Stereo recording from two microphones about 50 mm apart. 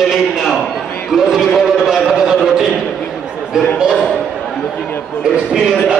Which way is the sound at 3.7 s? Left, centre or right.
Centre.